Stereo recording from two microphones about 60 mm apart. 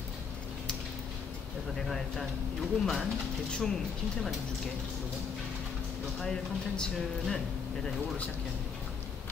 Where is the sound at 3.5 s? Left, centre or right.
Centre.